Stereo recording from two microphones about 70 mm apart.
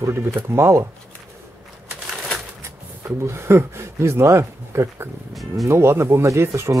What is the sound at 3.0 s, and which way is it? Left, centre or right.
Speech, right.